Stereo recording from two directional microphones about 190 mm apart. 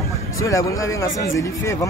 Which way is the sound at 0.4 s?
15° left (ahead or behind).